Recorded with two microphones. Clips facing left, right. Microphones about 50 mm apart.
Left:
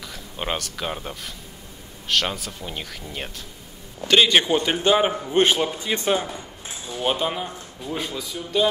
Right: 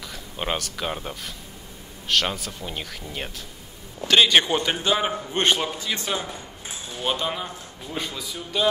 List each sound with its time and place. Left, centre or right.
0.1 s a man's voice: centre
4.8 s a man's voice: centre
5.8 s speech: left
7.0 s a man's voice: centre
7.9 s a man's voice: centre